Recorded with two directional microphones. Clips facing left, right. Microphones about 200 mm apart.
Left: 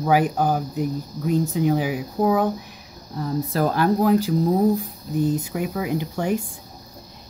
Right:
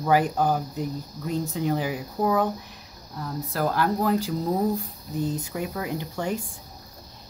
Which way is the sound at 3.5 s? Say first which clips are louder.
Left 4 dB; 20° left (ahead or behind).